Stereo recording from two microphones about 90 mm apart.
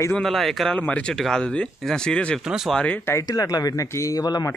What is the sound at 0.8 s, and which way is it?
Speech, 15° left (ahead or behind).